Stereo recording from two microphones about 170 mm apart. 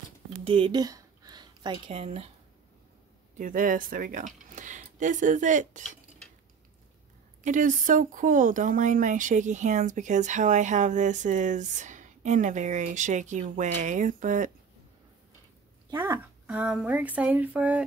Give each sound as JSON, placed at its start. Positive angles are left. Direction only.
{"t": 0.5, "sound": "a sound", "side_deg": -30}
{"t": 1.9, "sound": "speech", "side_deg": -40}
{"t": 3.3, "sound": "speech", "side_deg": -50}
{"t": 7.4, "sound": "speech", "side_deg": -50}
{"t": 16.0, "sound": "speech", "side_deg": -10}